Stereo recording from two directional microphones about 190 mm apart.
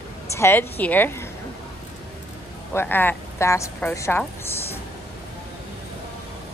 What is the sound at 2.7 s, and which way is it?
A woman's voice, 10° left (ahead or behind).